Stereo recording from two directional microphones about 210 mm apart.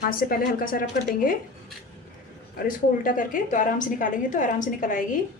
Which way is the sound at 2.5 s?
40° left (ahead or behind).